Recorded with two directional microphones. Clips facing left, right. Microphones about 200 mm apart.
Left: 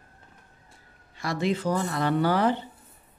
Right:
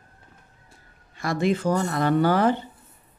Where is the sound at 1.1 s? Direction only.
50° right (ahead or behind).